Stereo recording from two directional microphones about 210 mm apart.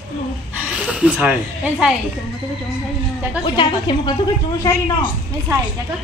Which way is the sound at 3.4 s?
20° left (ahead or behind).